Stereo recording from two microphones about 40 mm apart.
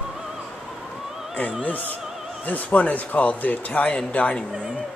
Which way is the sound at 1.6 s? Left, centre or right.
Left.